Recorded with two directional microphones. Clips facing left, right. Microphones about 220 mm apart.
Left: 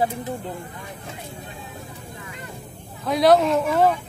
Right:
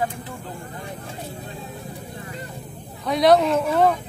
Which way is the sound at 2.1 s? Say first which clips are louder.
Right 4 dB; 35° right (ahead or behind).